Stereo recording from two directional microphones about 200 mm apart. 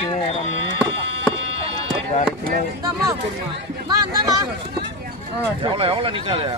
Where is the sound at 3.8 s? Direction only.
20° right (ahead or behind).